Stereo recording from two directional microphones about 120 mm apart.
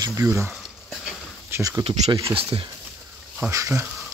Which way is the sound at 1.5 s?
30° right (ahead or behind).